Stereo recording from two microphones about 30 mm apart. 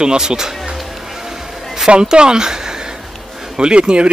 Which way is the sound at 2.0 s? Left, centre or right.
Right.